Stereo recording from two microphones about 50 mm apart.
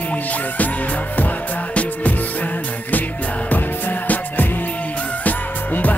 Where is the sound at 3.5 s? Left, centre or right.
Left.